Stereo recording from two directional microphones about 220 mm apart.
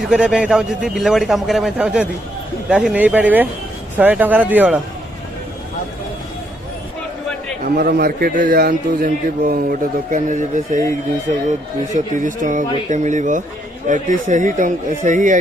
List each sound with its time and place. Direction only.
0.0 s a man's voice: 5° right (ahead or behind)
7.6 s a man's voice: 45° right (ahead or behind)
11.9 s a man's voice: 35° right (ahead or behind)